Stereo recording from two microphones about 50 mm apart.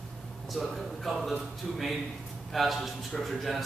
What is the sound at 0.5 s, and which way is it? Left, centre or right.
A man's voice, centre.